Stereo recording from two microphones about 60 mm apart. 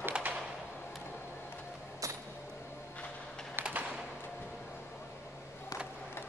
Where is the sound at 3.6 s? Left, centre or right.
Right.